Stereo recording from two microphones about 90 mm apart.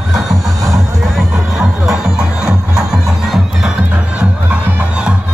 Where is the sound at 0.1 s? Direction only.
Centre (ahead or behind).